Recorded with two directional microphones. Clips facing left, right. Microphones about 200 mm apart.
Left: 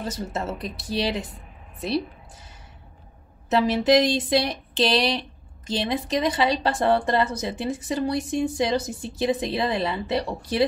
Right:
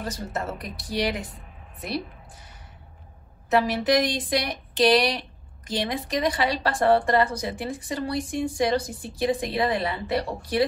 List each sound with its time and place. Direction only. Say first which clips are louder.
0.0 s a woman's voice: left 1 dB; 25° left (ahead or behind)
3.4 s a woman's voice: left 2 dB; 25° left (ahead or behind)